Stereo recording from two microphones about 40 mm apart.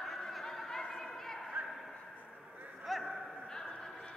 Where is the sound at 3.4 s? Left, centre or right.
Centre.